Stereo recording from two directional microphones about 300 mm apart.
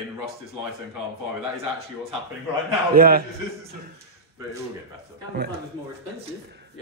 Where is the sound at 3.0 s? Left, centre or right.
Right.